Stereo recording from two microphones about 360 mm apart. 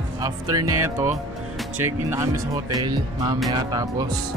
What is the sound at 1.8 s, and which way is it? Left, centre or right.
Speech, centre.